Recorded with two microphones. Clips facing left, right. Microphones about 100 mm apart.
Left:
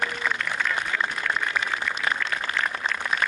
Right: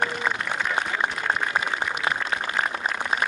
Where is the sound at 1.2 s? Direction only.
30° right (ahead or behind).